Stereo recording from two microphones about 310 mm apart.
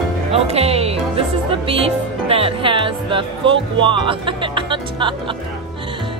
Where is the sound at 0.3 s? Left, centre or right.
Centre.